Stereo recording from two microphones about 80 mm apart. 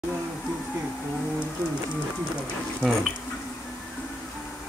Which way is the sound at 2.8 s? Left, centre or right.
Centre.